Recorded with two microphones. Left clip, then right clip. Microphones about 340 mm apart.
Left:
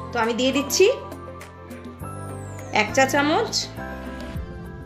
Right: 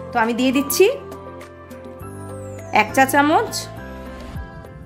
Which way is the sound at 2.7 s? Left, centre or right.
Right.